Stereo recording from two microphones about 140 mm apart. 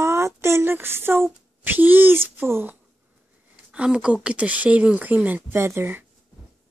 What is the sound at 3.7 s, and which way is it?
Speech, 5° right (ahead or behind).